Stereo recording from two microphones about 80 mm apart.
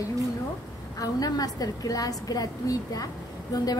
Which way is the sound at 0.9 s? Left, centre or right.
Left.